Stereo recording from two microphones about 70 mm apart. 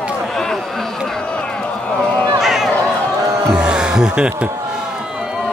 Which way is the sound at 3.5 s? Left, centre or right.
Centre.